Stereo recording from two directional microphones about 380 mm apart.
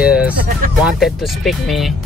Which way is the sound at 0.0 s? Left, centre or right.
Centre.